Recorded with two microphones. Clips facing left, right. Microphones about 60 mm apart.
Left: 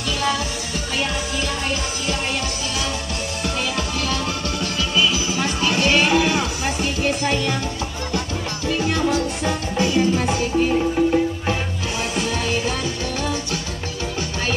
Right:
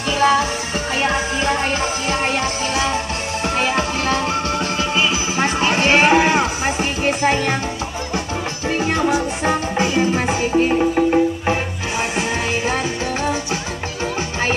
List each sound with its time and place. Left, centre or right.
0.2 s music: right
3.4 s music: right
8.6 s music: right